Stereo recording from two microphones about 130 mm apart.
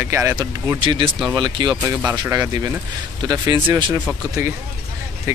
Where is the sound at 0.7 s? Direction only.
40° right (ahead or behind).